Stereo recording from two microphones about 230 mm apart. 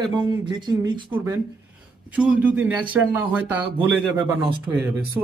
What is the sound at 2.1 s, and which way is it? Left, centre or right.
Speech, centre.